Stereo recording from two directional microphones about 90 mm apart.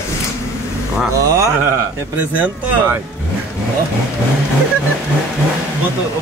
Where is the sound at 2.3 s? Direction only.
20° right (ahead or behind).